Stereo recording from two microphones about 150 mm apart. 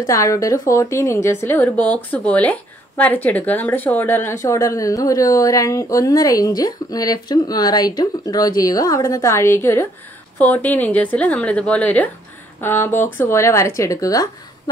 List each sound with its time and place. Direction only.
0.0 s a woman's voice: 20° left (ahead or behind)